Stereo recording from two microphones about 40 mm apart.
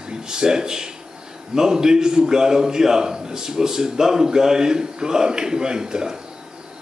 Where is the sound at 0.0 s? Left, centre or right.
Centre.